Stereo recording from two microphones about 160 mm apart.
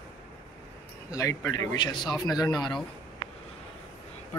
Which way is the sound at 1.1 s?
20° left (ahead or behind).